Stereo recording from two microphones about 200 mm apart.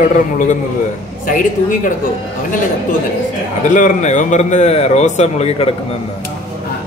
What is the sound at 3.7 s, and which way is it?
A man's voice, 35° left (ahead or behind).